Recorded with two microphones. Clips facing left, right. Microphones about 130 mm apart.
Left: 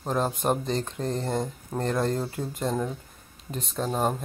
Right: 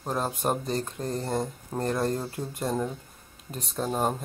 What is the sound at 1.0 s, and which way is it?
Speech, 30° left (ahead or behind).